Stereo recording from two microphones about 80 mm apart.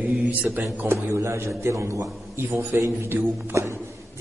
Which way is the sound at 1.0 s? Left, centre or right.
Right.